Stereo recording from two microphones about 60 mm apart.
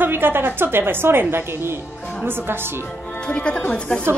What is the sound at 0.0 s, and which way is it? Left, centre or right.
A woman's voice, right.